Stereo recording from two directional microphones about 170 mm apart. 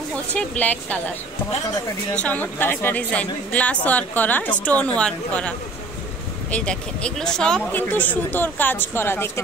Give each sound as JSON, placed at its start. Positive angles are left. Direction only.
{"t": 0.3, "sound": "speech", "side_deg": 10}
{"t": 2.1, "sound": "speech", "side_deg": 10}
{"t": 6.5, "sound": "speech", "side_deg": 5}